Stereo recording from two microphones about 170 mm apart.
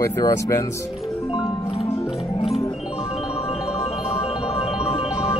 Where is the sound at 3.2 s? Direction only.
35° left (ahead or behind).